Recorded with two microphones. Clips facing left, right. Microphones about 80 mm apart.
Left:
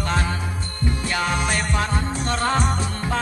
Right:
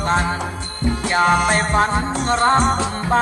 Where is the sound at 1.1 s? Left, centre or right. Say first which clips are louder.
Right 9 dB; right.